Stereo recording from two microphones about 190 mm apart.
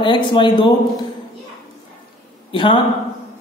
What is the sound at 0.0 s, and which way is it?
Speech, 25° left (ahead or behind).